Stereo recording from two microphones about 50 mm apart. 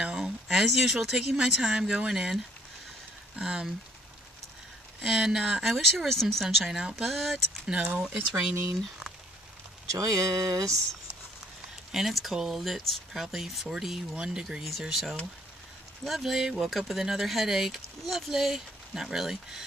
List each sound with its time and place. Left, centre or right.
0.1 s speech: centre
5.0 s speech: centre
5.6 s speech: centre
6.8 s speech: centre
7.1 s speech: centre
8.0 s speech: right
9.8 s speech: right
11.9 s speech: centre
14.6 s speech: centre